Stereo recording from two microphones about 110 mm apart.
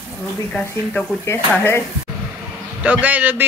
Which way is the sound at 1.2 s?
20° left (ahead or behind).